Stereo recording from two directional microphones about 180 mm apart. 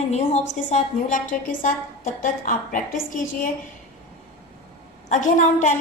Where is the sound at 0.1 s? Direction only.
40° left (ahead or behind).